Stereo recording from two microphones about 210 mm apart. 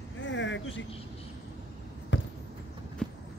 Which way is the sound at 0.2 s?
60° left (ahead or behind).